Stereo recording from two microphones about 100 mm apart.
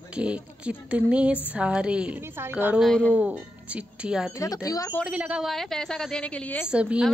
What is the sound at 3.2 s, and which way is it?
Speech, 15° right (ahead or behind).